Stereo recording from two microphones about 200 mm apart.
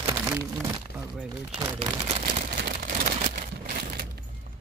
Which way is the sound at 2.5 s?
50° right (ahead or behind).